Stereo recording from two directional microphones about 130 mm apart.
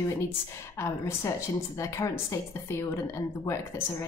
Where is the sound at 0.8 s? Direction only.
20° left (ahead or behind).